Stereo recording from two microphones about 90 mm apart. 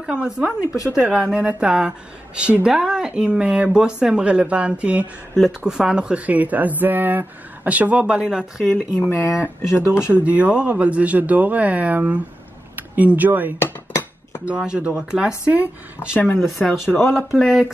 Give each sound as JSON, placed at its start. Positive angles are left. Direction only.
{"t": 0.0, "sound": "speech", "side_deg": -10}
{"t": 0.5, "sound": "speech", "side_deg": 15}
{"t": 1.1, "sound": "speech", "side_deg": -15}
{"t": 9.0, "sound": "speech", "side_deg": 25}
{"t": 10.2, "sound": "speech", "side_deg": -15}
{"t": 13.6, "sound": "cutlery", "side_deg": 25}
{"t": 14.4, "sound": "speech", "side_deg": -10}
{"t": 16.3, "sound": "speech", "side_deg": 0}